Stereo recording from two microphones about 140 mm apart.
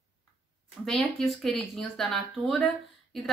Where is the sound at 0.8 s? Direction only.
Centre (ahead or behind).